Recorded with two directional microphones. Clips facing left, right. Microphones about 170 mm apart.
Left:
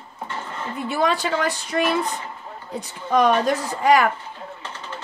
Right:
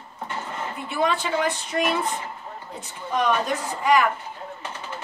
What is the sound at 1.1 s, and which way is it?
Speech, 35° left (ahead or behind).